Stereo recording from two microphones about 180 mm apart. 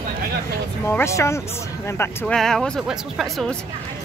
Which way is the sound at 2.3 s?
5° left (ahead or behind).